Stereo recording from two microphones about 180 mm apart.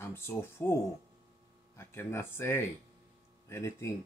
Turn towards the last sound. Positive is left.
turn(degrees=15)  # may be behind; listen again after turning